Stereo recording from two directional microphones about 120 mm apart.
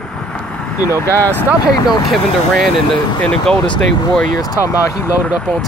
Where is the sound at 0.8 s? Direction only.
25° left (ahead or behind).